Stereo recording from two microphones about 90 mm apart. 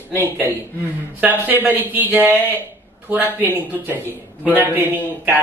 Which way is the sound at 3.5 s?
20° right (ahead or behind).